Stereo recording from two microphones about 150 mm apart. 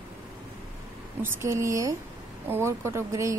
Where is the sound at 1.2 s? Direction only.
20° right (ahead or behind).